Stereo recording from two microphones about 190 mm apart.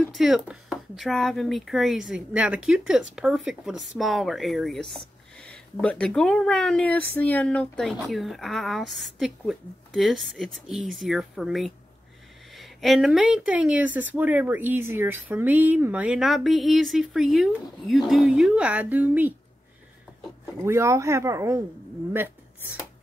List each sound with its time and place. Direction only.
0.0 s speech: centre (ahead or behind)
20.6 s speech: 15° right (ahead or behind)